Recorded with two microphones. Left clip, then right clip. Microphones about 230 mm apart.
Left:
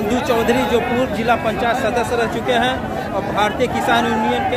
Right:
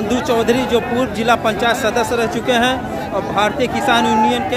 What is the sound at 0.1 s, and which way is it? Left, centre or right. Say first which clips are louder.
A man's voice: right 2 dB; centre.